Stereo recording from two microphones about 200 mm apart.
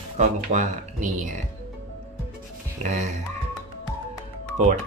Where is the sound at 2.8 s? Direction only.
35° right (ahead or behind).